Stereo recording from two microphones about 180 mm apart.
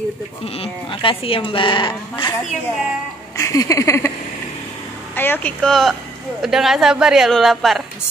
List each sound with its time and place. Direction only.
0.6 s speech: 30° left (ahead or behind)
3.3 s a sound: 20° left (ahead or behind)
5.1 s a woman's voice: 10° left (ahead or behind)